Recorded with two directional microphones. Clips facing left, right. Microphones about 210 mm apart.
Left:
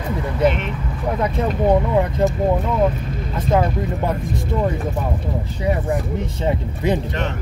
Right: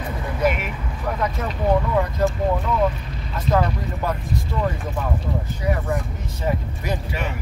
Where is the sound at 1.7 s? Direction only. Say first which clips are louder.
Left 1 dB; 20° left (ahead or behind).